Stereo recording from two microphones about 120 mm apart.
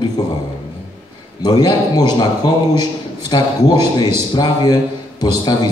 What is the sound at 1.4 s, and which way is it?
Speech, 35° left (ahead or behind).